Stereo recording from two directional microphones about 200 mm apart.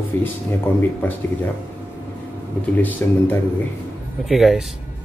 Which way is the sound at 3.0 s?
10° left (ahead or behind).